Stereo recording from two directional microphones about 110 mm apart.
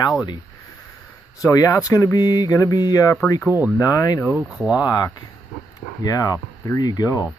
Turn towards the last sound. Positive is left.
turn(degrees=35)  # may be behind; listen again after turning